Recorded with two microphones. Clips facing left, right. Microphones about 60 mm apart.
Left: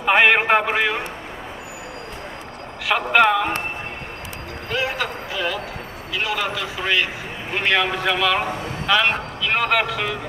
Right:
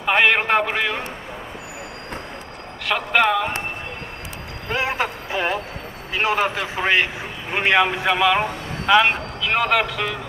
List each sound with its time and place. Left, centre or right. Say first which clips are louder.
0.0 s a man's voice: left 2 dB; centre
2.9 s speech: left 2 dB; centre
4.6 s a man's voice: right 1 dB; right
7.5 s a man's voice: right 2 dB; centre
9.4 s speech: right 1 dB; centre